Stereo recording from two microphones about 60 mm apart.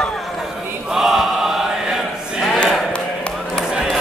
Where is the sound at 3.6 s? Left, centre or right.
Centre.